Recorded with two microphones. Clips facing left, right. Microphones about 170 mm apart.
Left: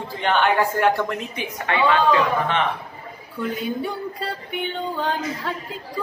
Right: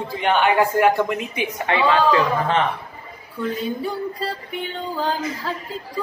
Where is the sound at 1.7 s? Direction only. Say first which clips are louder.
Right 1 dB; 30° right (ahead or behind).